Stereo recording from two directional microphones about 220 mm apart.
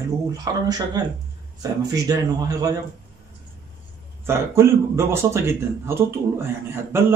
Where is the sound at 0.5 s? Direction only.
15° right (ahead or behind).